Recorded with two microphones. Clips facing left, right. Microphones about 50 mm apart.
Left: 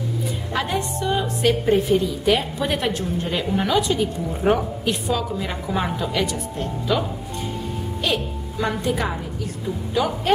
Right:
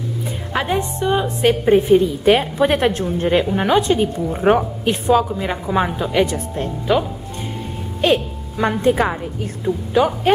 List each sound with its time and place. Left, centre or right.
0.5 s a woman's voice: right
5.3 s a woman's voice: centre
8.0 s a woman's voice: right